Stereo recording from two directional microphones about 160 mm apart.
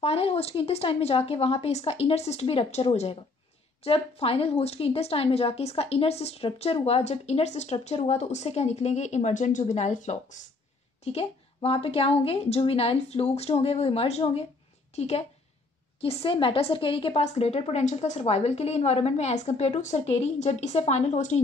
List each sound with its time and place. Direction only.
0.0 s a woman's voice: 40° left (ahead or behind)
11.1 s a woman's voice: 40° left (ahead or behind)